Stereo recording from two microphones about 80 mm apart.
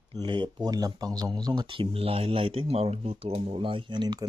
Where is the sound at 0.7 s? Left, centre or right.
Right.